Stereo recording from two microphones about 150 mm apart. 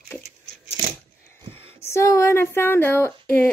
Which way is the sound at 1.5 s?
35° right (ahead or behind).